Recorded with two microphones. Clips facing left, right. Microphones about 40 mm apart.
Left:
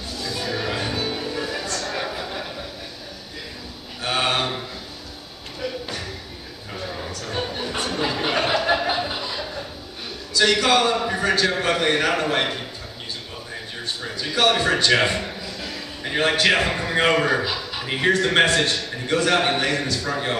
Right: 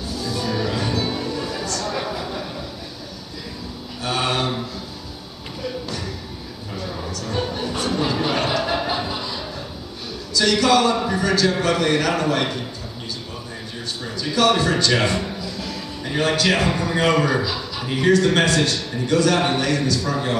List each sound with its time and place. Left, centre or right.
0.1 s music: left
0.5 s music: left
2.0 s a sound: centre
4.0 s mantra: left
6.7 s a sound: centre
9.0 s music: centre
10.3 s a man's voice: left
11.1 s a sound: left
11.6 s a man's voice: left
14.0 s a man's voice: left